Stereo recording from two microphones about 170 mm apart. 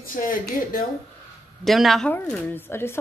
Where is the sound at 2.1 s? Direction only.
15° left (ahead or behind).